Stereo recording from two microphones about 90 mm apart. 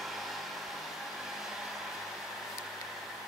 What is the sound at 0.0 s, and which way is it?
Hair dryer, centre (ahead or behind).